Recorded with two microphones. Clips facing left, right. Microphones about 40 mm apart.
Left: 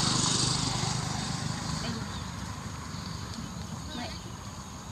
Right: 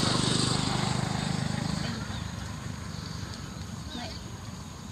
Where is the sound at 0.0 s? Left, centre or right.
Centre.